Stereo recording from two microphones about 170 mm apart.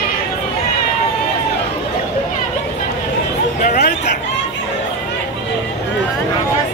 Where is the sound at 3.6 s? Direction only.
60° left (ahead or behind).